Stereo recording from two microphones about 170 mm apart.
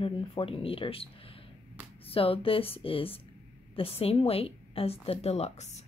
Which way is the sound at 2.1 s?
35° left (ahead or behind).